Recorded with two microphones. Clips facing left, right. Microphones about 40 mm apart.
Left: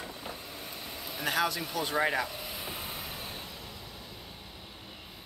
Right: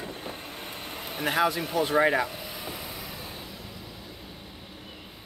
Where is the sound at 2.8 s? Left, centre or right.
Left.